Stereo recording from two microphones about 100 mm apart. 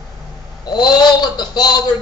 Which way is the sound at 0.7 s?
40° left (ahead or behind).